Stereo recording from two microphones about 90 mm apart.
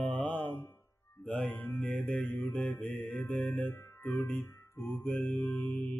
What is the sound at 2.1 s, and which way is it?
Music, 20° left (ahead or behind).